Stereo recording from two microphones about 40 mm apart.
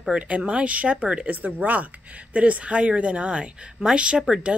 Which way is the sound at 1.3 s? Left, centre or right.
Right.